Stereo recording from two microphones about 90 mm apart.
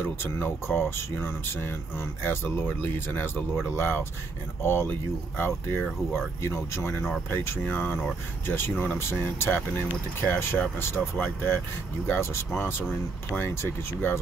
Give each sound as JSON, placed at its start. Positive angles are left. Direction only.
{"t": 0.0, "sound": "speech", "side_deg": 20}